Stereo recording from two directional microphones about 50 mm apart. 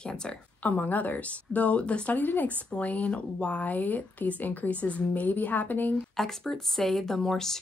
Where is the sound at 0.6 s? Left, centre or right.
Left.